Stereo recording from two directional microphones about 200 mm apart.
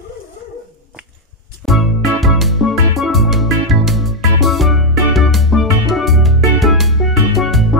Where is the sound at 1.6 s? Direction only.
Centre (ahead or behind).